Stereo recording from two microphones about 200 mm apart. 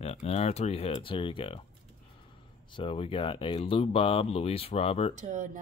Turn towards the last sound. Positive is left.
turn(degrees=-40)  # may be behind; listen again after turning